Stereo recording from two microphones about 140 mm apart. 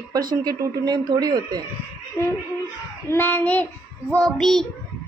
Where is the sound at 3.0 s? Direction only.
15° left (ahead or behind).